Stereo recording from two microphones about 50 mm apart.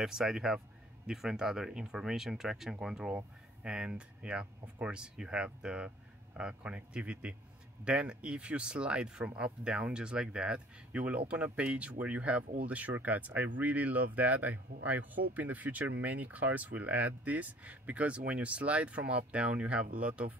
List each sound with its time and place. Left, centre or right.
0.0 s speech: centre
3.6 s speech: right